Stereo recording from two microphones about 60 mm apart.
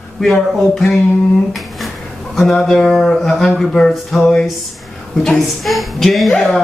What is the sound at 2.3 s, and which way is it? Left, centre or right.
Speech, centre.